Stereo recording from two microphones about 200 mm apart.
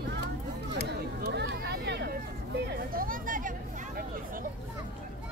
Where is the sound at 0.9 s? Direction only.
50° right (ahead or behind).